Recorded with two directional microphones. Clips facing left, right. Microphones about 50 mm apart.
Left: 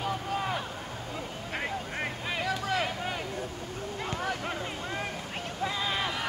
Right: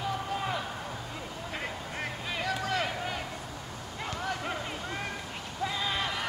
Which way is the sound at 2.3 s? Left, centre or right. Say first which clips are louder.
Left 1 dB; centre.